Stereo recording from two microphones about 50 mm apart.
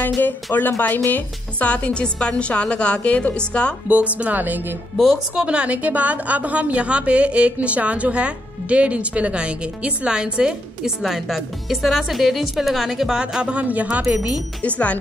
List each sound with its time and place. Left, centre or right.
0.2 s speech: left
3.9 s speech: right
5.1 s a woman's voice: centre
11.0 s speech: centre
13.1 s a woman's voice: centre
14.6 s speech: left